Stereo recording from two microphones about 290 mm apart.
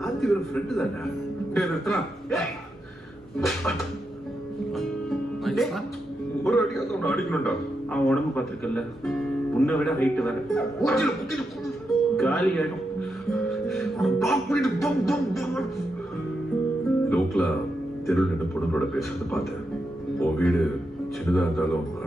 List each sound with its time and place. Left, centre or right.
0.0 s a man's voice: centre
5.4 s music: centre
6.4 s a man's voice: centre
13.3 s music: centre
17.1 s guitar: centre
18.0 s a man's voice: centre